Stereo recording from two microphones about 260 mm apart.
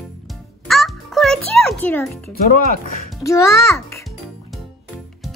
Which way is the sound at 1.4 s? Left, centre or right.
Centre.